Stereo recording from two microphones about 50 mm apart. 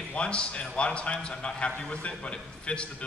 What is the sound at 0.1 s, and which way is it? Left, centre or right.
A man's voice, left.